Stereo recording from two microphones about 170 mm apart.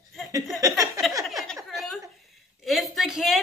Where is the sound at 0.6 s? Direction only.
20° right (ahead or behind).